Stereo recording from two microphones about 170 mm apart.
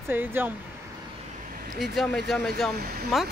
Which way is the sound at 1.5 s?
55° right (ahead or behind).